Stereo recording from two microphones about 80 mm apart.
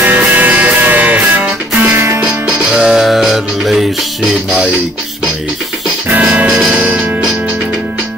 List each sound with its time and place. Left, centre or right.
0.0 s music: right
2.0 s music: right
2.2 s music: centre
6.1 s music: centre